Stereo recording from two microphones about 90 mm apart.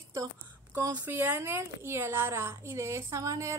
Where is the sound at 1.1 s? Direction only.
25° right (ahead or behind).